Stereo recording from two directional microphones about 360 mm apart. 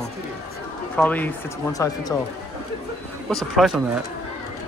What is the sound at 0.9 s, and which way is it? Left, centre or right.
Speech, centre.